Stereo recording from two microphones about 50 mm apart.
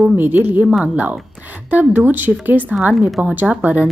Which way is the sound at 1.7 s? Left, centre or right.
Right.